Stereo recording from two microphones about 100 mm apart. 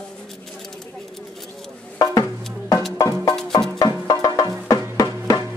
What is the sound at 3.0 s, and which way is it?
Music, 35° left (ahead or behind).